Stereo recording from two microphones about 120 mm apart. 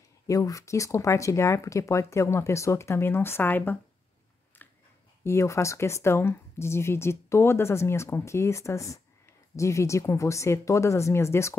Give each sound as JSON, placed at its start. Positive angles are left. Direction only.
{"t": 0.3, "sound": "speech", "side_deg": 30}
{"t": 5.2, "sound": "speech", "side_deg": 25}